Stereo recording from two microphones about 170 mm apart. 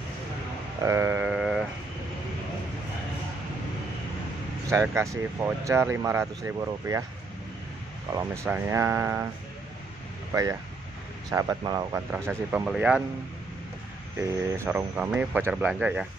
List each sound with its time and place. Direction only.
0.8 s sheep: 15° right (ahead or behind)
4.8 s speech: 15° right (ahead or behind)
8.1 s speech: 15° right (ahead or behind)
10.3 s speech: 20° right (ahead or behind)
12.1 s speech: 10° right (ahead or behind)
14.1 s speech: 15° right (ahead or behind)